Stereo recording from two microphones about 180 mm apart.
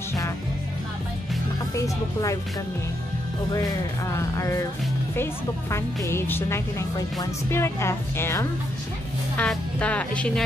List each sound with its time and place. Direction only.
4.1 s speech: 15° left (ahead or behind)